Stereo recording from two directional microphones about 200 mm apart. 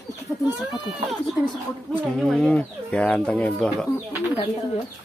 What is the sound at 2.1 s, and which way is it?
Speech, 5° left (ahead or behind).